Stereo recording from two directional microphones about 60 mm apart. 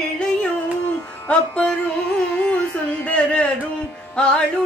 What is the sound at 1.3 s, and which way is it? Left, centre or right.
Music, centre.